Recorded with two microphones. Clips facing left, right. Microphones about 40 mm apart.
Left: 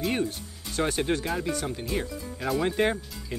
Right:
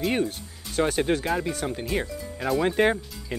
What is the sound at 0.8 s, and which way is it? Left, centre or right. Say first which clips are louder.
Speech: right 3 dB; centre.